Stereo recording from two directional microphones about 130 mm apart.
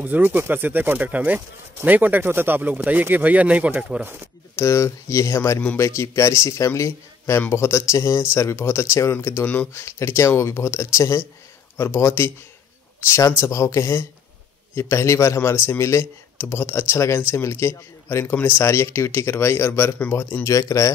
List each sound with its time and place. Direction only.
0.0 s speech: 15° right (ahead or behind)
4.6 s a man's voice: 20° left (ahead or behind)